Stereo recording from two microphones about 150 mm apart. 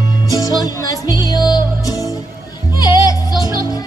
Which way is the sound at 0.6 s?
25° left (ahead or behind).